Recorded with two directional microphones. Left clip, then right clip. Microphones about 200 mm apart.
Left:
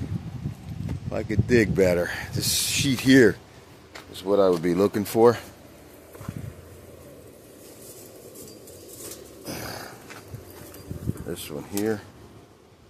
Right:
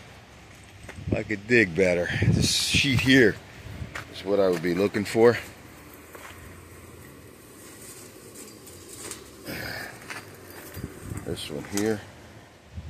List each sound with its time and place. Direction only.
1.5 s speech: 20° left (ahead or behind)
5.1 s speech: 10° left (ahead or behind)
9.5 s a sound: 15° left (ahead or behind)
11.2 s speech: centre (ahead or behind)